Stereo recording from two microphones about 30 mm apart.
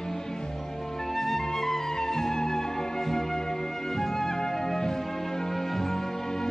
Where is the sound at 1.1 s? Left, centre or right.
Centre.